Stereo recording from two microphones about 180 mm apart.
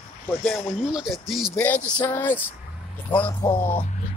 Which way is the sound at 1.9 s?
10° left (ahead or behind).